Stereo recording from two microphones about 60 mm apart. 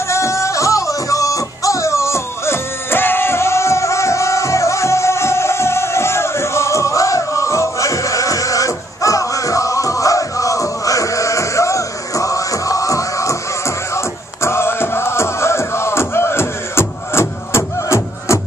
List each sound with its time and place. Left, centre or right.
0.1 s music: left